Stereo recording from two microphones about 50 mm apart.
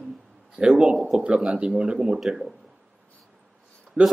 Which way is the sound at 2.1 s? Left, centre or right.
Centre.